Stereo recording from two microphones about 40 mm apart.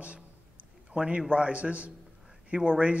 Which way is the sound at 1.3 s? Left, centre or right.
Right.